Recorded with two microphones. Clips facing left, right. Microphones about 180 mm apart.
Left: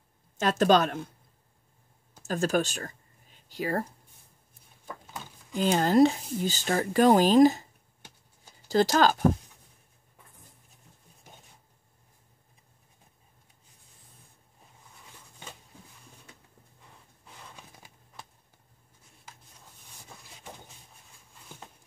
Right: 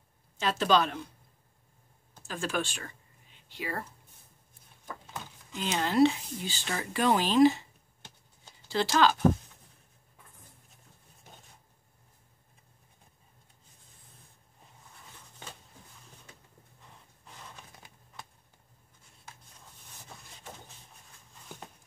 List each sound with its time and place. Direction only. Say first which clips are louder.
0.4 s speech: left 4 dB; 50° left (ahead or behind)
2.2 s speech: left 7 dB; 40° left (ahead or behind)
5.5 s speech: left 7 dB; 40° left (ahead or behind)
8.6 s speech: left 3 dB; 40° left (ahead or behind)
17.6 s a sound: left 1 dB; 10° left (ahead or behind)